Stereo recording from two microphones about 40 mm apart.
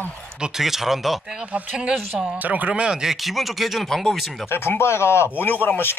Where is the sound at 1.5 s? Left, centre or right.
Right.